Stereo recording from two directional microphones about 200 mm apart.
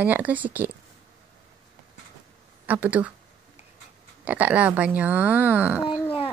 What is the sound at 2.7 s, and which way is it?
Speech, 10° right (ahead or behind).